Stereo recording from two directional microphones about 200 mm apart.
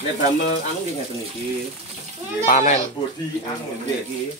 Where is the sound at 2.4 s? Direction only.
35° left (ahead or behind).